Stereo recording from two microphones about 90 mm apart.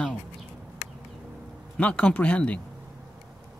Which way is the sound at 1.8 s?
15° left (ahead or behind).